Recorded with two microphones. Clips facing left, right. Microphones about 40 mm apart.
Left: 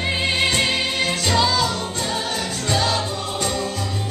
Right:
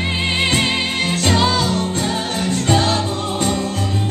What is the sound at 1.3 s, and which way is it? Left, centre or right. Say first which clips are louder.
Music: right 2 dB; right.